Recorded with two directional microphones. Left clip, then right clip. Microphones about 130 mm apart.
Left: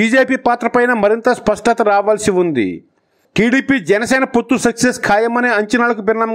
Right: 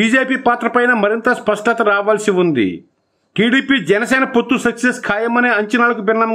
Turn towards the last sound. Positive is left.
turn(degrees=40)  # may be behind; listen again after turning